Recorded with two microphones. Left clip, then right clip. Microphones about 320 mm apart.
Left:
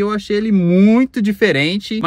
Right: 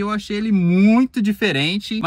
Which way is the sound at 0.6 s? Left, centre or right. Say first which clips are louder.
Left 2 dB; left.